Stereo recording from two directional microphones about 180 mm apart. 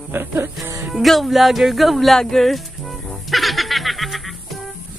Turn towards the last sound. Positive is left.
turn(degrees=0)  # may be behind; listen again after turning